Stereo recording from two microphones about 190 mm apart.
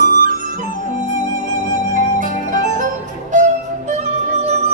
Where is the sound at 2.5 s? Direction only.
40° right (ahead or behind).